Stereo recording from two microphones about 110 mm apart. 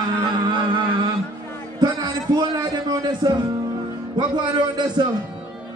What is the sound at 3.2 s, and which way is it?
Speech, 45° right (ahead or behind).